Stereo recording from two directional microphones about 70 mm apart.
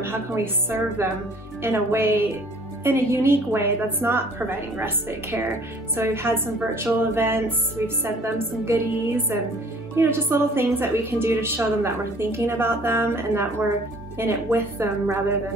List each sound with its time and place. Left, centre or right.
0.0 s a woman's voice: right
9.9 s a woman's voice: right